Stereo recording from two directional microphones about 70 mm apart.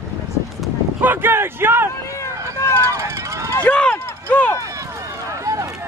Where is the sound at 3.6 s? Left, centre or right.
Centre.